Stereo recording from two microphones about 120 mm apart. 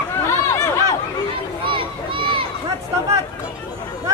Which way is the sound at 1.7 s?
45° right (ahead or behind).